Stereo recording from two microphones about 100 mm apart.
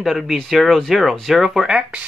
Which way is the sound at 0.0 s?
Centre (ahead or behind).